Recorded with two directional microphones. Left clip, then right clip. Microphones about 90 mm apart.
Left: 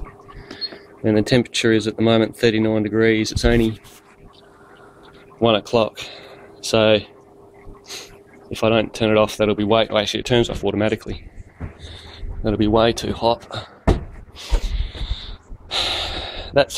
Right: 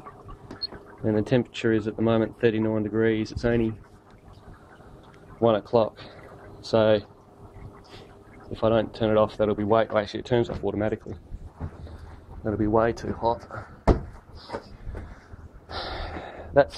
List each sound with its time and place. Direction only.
1.0 s speech: 25° left (ahead or behind)
5.4 s speech: 20° left (ahead or behind)
8.5 s speech: 15° left (ahead or behind); by 11.1 s 40° left (ahead or behind)
12.6 s speech: 35° left (ahead or behind)
15.7 s gasp: 25° left (ahead or behind)